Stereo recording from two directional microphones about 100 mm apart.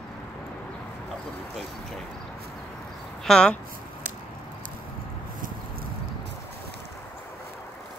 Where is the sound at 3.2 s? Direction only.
5° left (ahead or behind).